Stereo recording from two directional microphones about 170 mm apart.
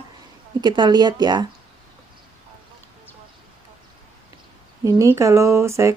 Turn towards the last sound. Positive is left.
turn(degrees=-15)  # may be behind; listen again after turning